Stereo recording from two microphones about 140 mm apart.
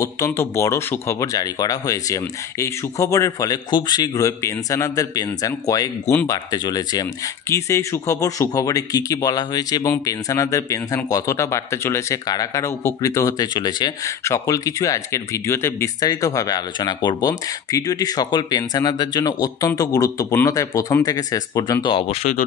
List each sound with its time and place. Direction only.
0.0 s speech: 20° left (ahead or behind)
21.8 s speech: 40° left (ahead or behind)